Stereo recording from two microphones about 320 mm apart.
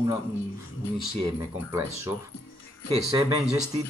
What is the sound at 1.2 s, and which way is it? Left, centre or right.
Speech, centre.